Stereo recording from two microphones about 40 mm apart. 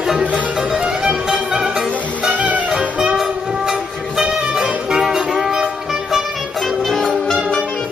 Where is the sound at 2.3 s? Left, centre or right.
Right.